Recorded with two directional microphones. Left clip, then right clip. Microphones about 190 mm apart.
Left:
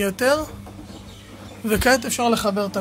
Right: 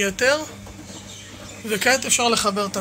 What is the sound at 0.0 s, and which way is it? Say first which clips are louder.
Speech: even; 40° left (ahead or behind).